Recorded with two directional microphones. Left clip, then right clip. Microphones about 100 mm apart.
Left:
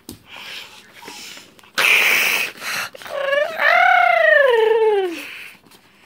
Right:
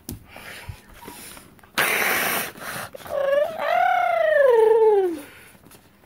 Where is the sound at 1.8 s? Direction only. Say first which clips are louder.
Left 7 dB; 60° right (ahead or behind).